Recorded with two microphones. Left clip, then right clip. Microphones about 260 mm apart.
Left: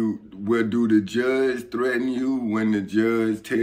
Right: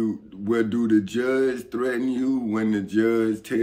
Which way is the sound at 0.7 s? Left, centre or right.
Centre.